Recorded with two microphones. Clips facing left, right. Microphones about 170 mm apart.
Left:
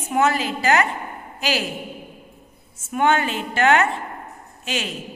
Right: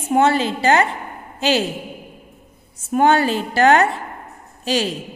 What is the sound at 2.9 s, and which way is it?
A woman's voice, 35° right (ahead or behind).